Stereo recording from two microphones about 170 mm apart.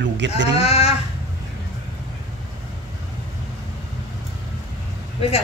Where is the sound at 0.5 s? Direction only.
35° left (ahead or behind).